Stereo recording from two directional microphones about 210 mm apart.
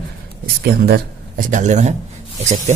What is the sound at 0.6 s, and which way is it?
Speech, 50° right (ahead or behind).